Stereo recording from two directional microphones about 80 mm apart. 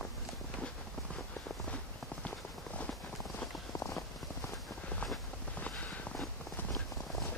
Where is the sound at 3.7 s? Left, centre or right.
Left.